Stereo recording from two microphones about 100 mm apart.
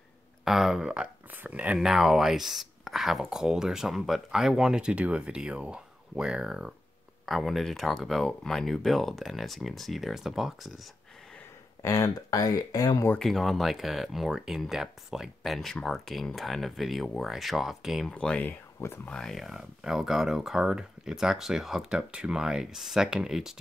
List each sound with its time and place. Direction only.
0.5 s speech: 5° right (ahead or behind)
11.8 s speech: 30° left (ahead or behind)
13.2 s speech: centre (ahead or behind)
18.1 s speech: 10° left (ahead or behind); by 23.5 s 5° right (ahead or behind)